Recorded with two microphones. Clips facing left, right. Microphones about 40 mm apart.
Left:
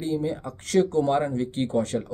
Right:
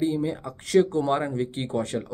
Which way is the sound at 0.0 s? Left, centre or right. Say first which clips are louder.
Right 1 dB; centre.